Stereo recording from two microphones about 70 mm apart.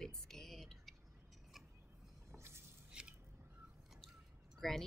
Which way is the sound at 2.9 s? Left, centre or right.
Centre.